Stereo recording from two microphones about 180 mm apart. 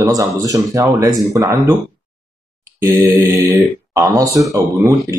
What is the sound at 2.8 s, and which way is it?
Speech, 15° right (ahead or behind).